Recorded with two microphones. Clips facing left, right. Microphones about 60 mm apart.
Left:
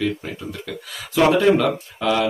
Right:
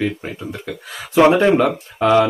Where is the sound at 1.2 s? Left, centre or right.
Right.